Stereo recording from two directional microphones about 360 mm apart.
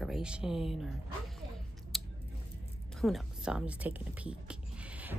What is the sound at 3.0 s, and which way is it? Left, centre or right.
Speech, centre.